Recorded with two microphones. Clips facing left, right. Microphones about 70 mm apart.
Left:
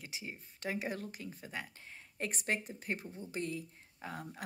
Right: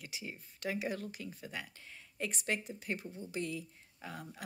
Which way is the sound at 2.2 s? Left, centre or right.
Left.